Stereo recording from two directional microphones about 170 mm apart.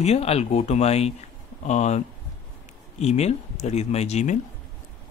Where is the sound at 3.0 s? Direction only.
40° left (ahead or behind).